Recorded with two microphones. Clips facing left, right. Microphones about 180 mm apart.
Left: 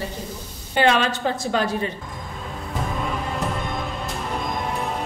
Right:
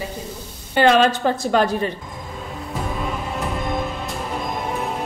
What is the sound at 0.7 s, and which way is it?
Speech, 50° right (ahead or behind).